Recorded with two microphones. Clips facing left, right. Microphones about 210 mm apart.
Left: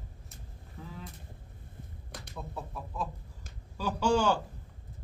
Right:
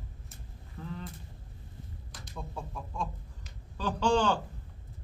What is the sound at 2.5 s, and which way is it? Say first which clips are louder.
Speech: left 1 dB; 5° left (ahead or behind).